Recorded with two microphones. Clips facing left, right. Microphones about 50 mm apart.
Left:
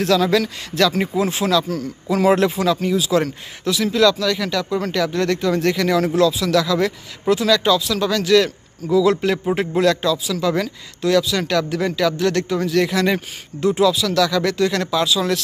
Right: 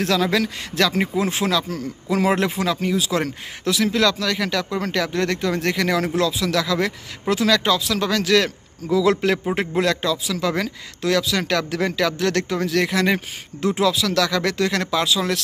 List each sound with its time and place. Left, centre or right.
0.0 s speech: right
7.2 s speech: right
9.6 s speech: right
13.6 s speech: right